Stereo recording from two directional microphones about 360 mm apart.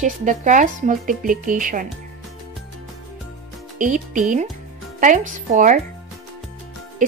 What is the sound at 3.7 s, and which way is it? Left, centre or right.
Speech, right.